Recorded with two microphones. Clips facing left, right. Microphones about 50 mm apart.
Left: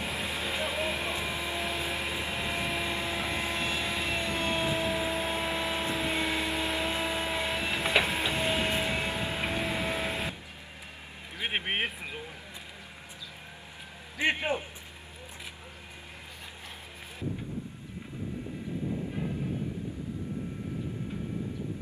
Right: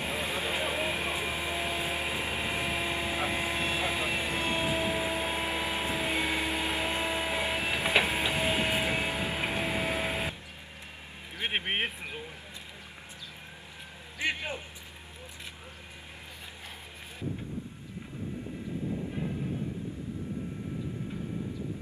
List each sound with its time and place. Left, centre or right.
0.0 s vehicle: centre
11.4 s a sound: centre
14.1 s music: left